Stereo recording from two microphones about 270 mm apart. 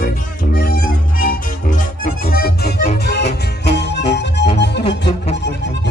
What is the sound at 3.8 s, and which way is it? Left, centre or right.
Music, left.